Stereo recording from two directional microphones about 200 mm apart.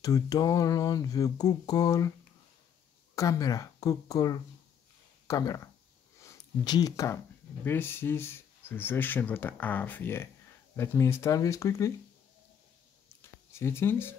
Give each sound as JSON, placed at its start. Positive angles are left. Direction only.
{"t": 0.0, "sound": "speech", "side_deg": 15}
{"t": 3.2, "sound": "speech", "side_deg": 15}
{"t": 13.2, "sound": "a sound", "side_deg": 10}